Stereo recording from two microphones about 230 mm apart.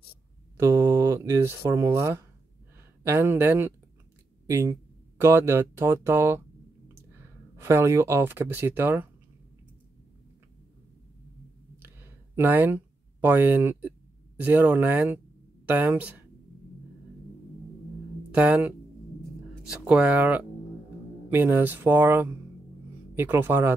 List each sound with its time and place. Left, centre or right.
0.6 s speech: centre
7.5 s speech: centre
11.8 s a sound: centre
15.6 s speech: centre
18.3 s speech: centre
19.7 s speech: centre